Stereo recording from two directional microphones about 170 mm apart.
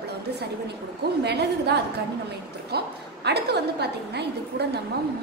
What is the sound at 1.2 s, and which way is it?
A woman's voice, 75° right (ahead or behind).